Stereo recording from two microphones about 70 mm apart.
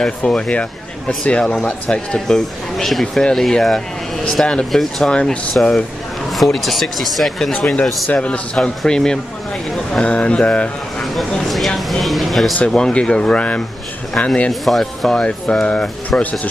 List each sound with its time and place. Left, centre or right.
0.0 s speech: centre
5.1 s speech: centre
11.3 s speech: centre
12.5 s speech: centre
14.5 s speech: centre